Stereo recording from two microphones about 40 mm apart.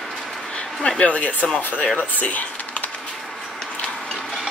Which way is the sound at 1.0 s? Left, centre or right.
Left.